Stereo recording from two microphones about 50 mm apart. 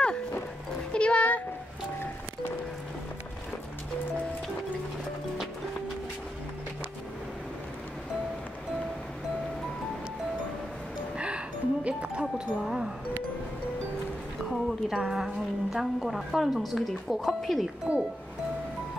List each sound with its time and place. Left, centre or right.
0.9 s a sound: left
11.1 s speech: right
14.5 s a woman's voice: centre
17.9 s speech: right